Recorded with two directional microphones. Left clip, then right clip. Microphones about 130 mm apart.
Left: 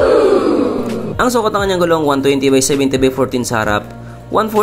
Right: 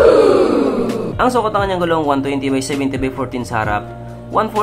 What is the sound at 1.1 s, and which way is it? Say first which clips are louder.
Speech: left 1 dB; 40° left (ahead or behind).